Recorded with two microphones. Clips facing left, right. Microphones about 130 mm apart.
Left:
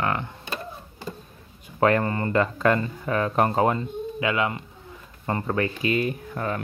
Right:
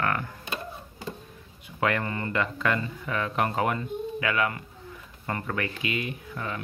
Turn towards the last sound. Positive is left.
turn(degrees=45)  # may be behind; listen again after turning